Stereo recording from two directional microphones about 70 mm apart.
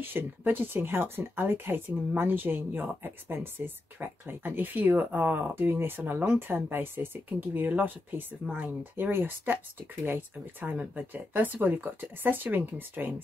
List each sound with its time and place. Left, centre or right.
0.0 s speech: right